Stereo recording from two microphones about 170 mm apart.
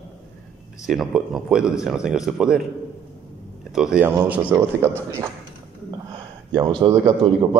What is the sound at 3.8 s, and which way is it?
Speech, 5° right (ahead or behind).